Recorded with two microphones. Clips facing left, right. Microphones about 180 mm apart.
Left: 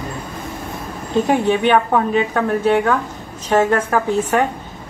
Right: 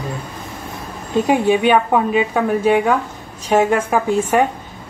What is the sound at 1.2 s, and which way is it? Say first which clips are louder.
A woman's voice: right 2 dB; 10° right (ahead or behind).